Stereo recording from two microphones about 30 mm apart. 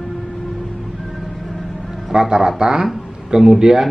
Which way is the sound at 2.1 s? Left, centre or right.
Right.